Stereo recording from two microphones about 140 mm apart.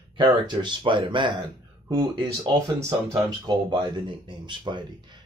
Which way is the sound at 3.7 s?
35° right (ahead or behind).